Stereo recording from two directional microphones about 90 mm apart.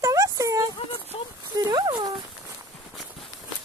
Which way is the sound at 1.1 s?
90° left.